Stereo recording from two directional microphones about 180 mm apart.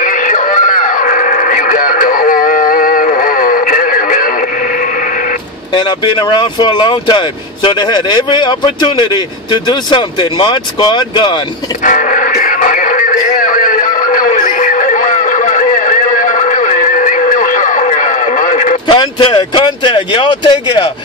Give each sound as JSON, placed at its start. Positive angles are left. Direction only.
{"t": 0.0, "sound": "a sound", "side_deg": 45}
{"t": 5.7, "sound": "speech", "side_deg": 25}
{"t": 11.8, "sound": "music", "side_deg": 45}
{"t": 18.9, "sound": "speech", "side_deg": 30}